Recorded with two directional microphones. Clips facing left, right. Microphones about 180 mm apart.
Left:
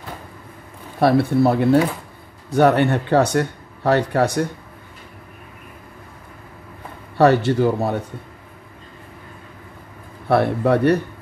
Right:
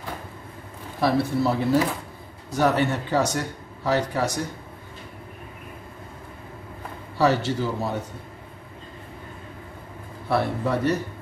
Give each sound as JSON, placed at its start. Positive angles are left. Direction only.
{"t": 0.9, "sound": "speech", "side_deg": 60}
{"t": 7.2, "sound": "speech", "side_deg": 60}
{"t": 10.2, "sound": "speech", "side_deg": 60}